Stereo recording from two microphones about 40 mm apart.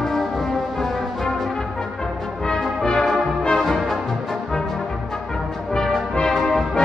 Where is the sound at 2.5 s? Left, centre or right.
Centre.